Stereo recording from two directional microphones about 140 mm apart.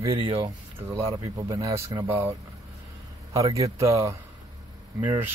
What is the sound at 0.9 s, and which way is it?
Speech, 25° right (ahead or behind).